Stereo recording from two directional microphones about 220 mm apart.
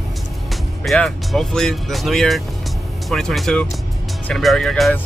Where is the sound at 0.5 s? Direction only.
Centre (ahead or behind).